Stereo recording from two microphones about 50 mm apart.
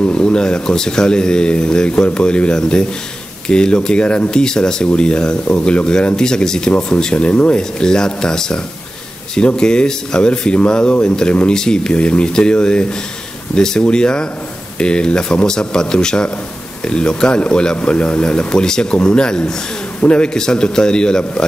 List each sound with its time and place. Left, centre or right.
0.0 s speech: centre
9.6 s speech: centre